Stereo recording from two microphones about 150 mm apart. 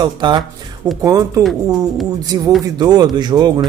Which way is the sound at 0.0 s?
30° right (ahead or behind).